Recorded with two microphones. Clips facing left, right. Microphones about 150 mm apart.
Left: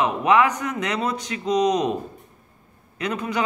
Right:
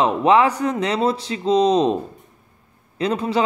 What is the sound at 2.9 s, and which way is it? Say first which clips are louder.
Speech: right 5 dB; 30° right (ahead or behind).